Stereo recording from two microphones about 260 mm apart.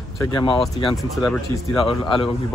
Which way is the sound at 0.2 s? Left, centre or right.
Centre.